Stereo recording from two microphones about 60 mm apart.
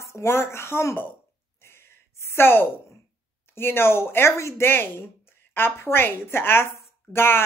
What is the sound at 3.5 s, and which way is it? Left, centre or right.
Speech, left.